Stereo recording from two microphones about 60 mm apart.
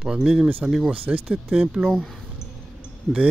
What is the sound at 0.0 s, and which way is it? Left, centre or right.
Speech, centre.